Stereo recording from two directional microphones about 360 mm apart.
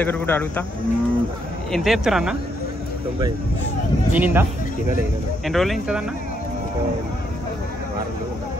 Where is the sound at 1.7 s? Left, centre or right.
Centre.